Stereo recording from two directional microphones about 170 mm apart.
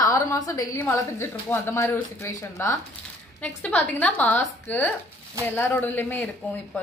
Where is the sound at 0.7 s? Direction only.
15° left (ahead or behind).